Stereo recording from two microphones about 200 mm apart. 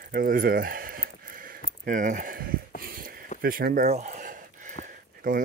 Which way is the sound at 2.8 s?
45° right (ahead or behind).